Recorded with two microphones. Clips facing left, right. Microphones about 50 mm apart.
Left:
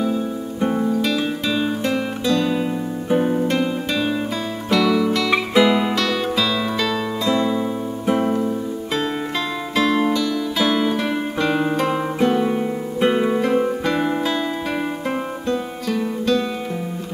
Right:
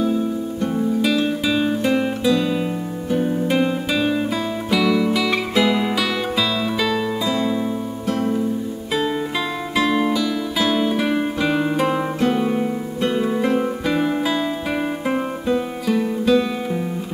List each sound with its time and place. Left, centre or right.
0.6 s music: left
1.0 s music: centre
3.1 s music: centre
3.4 s music: centre
5.3 s music: centre
8.1 s music: left
9.8 s music: centre
13.0 s music: centre
13.4 s music: centre
15.0 s music: centre